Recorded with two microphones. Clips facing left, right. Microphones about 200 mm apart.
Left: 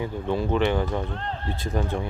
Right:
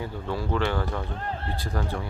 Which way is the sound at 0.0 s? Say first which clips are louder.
Left 5 dB; 20° left (ahead or behind).